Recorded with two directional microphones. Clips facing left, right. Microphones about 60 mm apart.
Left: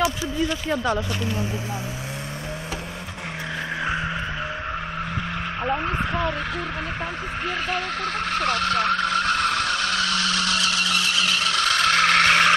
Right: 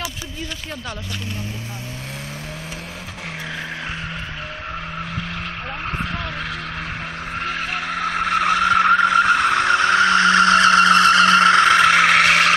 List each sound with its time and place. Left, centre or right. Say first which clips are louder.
7.4 s vehicle: right 1 dB; centre